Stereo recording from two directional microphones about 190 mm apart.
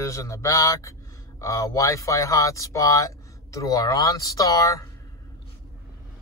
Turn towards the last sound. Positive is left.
turn(degrees=15)  # may be behind; listen again after turning